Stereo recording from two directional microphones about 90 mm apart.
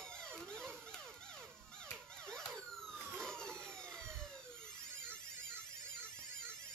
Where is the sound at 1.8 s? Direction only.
10° left (ahead or behind).